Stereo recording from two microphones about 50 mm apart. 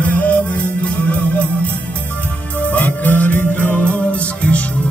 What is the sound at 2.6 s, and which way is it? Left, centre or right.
Music, left.